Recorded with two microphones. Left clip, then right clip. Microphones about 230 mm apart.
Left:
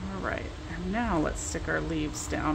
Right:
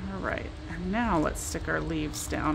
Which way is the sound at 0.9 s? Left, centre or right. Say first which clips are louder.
Right 2 dB; centre.